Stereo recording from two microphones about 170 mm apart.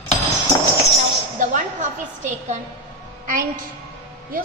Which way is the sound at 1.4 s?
50° right (ahead or behind).